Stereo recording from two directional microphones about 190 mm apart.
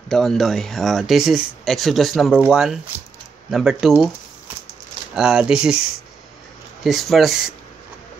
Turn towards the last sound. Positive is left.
turn(degrees=0)  # may be behind; listen again after turning